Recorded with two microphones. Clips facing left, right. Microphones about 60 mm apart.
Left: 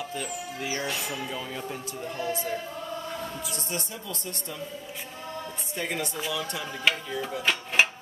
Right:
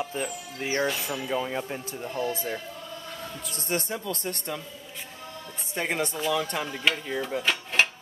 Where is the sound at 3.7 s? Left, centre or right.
Right.